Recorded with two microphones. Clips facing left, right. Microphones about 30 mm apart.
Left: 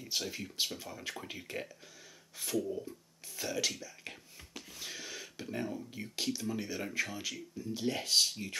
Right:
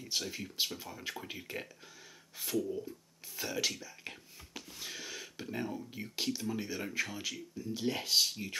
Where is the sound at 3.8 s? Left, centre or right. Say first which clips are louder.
Even; centre.